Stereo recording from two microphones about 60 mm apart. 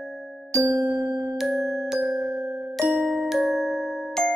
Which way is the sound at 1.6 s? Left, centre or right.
Centre.